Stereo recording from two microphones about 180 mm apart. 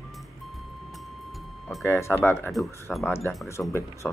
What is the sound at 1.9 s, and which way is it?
Speech, 15° left (ahead or behind).